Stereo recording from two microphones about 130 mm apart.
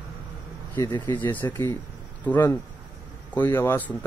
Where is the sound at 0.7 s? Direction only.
30° left (ahead or behind).